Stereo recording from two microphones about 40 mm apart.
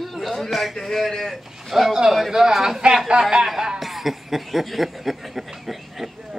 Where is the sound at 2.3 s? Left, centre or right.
Centre.